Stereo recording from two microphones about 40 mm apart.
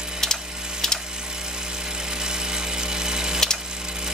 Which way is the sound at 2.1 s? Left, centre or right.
Centre.